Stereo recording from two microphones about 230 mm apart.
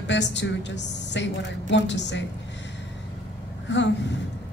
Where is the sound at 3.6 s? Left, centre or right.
Left.